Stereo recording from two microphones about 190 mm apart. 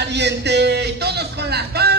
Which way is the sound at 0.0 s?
65° right (ahead or behind).